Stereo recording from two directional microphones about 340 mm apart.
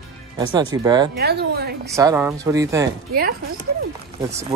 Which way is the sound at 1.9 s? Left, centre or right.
Centre.